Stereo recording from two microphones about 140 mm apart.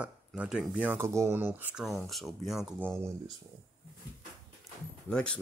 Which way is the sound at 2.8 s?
20° right (ahead or behind).